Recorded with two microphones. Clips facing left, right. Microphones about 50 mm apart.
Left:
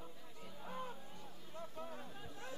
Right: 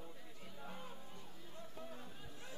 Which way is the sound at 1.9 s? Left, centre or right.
Centre.